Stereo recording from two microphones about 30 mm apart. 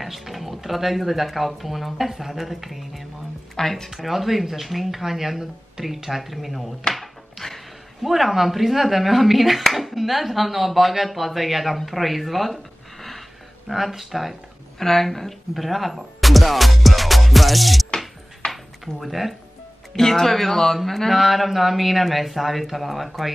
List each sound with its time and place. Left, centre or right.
0.0 s a sound: centre
0.7 s speech: centre
3.5 s a man's voice: centre
3.9 s speech: centre
7.4 s speech: left
8.0 s speech: centre
13.7 s speech: centre
14.8 s speech: centre
18.5 s a sound: centre
20.0 s a man's voice: centre